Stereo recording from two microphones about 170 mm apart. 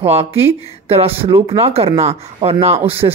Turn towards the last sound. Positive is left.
turn(degrees=-35)  # may be behind; listen again after turning